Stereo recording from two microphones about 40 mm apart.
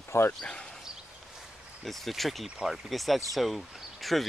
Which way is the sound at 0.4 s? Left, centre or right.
Left.